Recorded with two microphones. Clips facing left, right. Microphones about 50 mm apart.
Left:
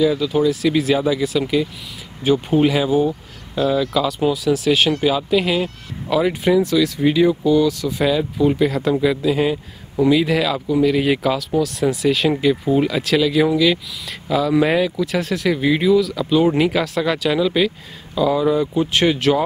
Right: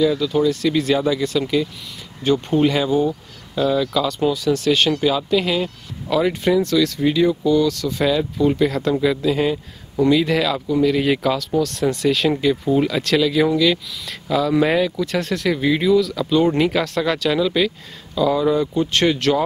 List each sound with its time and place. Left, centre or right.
0.0 s speech: centre
3.1 s speech: left
3.7 s speech: centre